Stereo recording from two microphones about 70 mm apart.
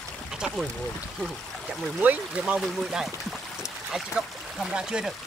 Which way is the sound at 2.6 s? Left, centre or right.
Centre.